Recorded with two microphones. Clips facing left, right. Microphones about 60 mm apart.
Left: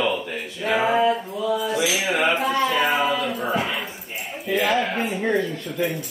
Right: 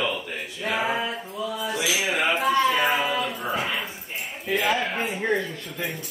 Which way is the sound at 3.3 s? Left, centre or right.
Centre.